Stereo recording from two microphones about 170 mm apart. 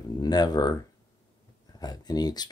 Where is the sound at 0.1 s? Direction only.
25° left (ahead or behind).